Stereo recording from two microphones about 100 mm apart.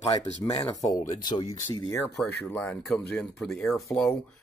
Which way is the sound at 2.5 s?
15° left (ahead or behind).